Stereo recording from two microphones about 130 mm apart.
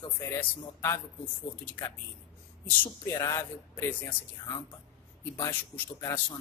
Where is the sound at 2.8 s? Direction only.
20° left (ahead or behind).